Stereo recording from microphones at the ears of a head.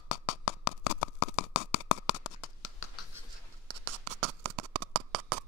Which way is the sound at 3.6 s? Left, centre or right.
Right.